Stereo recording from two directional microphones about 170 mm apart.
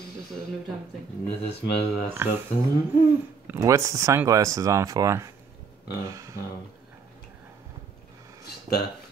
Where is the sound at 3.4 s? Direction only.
15° right (ahead or behind).